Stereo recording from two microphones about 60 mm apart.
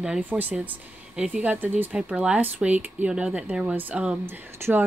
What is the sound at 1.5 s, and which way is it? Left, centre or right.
Speech, right.